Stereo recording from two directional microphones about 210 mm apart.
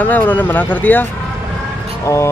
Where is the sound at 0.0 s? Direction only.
10° left (ahead or behind).